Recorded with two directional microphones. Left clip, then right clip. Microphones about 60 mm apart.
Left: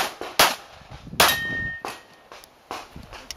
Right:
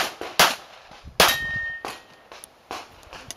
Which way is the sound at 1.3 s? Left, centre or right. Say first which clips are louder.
Even; centre.